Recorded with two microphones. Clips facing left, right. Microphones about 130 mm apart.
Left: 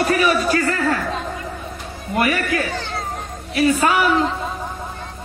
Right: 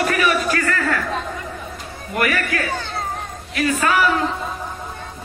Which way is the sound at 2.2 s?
20° left (ahead or behind).